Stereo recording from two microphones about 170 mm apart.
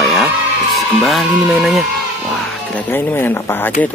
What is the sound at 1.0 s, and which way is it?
Speech, centre (ahead or behind).